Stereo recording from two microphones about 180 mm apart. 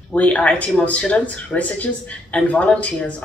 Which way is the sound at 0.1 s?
5° left (ahead or behind).